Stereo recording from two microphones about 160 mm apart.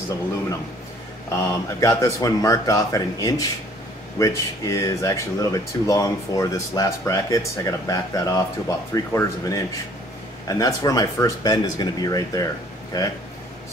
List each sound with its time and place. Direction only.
1.3 s speech: 20° left (ahead or behind)
10.6 s speech: 25° left (ahead or behind)